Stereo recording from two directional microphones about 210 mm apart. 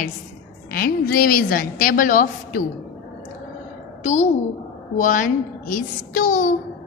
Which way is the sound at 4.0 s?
35° left (ahead or behind).